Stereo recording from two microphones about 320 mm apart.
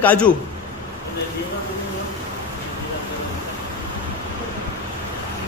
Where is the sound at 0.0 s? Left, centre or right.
Centre.